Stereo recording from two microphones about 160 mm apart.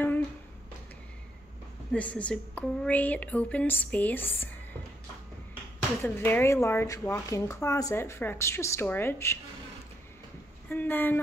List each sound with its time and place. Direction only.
1.9 s speech: 10° left (ahead or behind)
6.0 s speech: 15° left (ahead or behind)
10.7 s speech: 10° left (ahead or behind)